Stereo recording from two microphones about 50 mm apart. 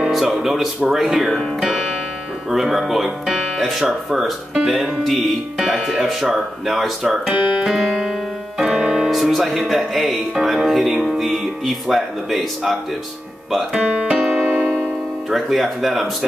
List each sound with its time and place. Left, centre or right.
0.1 s speech: centre
1.6 s music: centre
2.5 s speech: centre
8.5 s piano: centre
9.1 s speech: centre
13.7 s speech: right
14.1 s keyboard: centre
15.2 s speech: centre